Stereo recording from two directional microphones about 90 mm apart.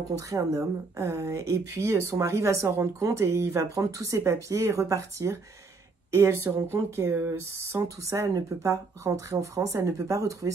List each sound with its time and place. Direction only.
0.1 s speech: 40° right (ahead or behind)